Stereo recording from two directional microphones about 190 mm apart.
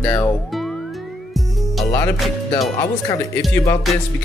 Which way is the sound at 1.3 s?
Centre (ahead or behind).